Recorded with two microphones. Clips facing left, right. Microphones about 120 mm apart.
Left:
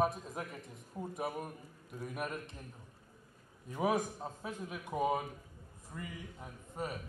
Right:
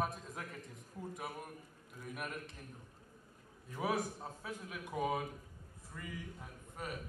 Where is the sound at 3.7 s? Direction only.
20° left (ahead or behind).